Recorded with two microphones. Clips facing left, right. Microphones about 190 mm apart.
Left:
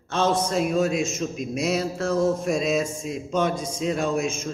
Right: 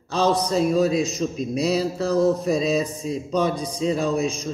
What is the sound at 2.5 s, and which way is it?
Speech, centre (ahead or behind).